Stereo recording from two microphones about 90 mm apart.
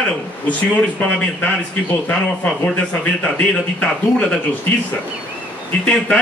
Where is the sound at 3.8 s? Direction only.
5° left (ahead or behind).